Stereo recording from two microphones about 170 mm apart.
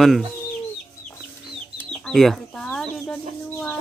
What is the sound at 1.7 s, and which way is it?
Chicken, 5° left (ahead or behind).